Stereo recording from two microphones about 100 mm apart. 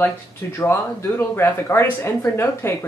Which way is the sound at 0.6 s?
25° left (ahead or behind).